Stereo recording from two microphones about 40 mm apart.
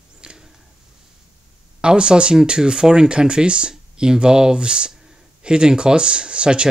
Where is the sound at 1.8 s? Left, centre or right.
Right.